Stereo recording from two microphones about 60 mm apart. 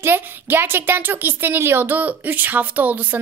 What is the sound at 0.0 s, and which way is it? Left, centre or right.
A woman's voice, right.